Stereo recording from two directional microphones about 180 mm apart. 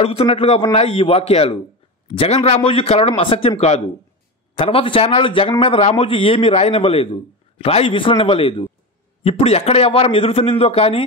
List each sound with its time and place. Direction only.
0.0 s a man's voice: 35° left (ahead or behind)